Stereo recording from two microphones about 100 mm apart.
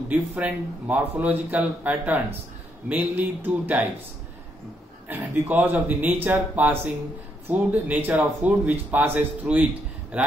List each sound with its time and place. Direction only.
0.1 s speech: 15° right (ahead or behind)
5.0 s speech: 15° right (ahead or behind)